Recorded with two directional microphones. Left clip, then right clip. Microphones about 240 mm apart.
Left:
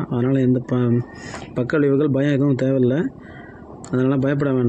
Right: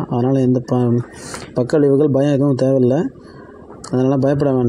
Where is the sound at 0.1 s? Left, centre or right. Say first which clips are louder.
Right 3 dB; centre.